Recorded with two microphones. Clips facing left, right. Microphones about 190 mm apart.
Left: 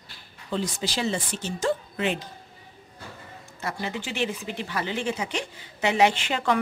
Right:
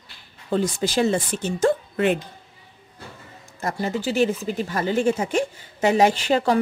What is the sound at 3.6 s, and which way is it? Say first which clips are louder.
Speech: right 6 dB; 40° right (ahead or behind).